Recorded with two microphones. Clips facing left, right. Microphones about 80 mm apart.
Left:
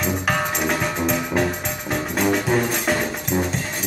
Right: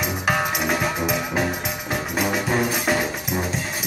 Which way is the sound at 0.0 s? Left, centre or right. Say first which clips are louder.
Even; centre.